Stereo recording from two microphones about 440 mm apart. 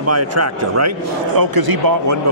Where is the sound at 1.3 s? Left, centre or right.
Right.